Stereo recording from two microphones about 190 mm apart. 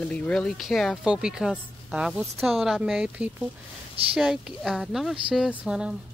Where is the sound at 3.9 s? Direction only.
30° right (ahead or behind).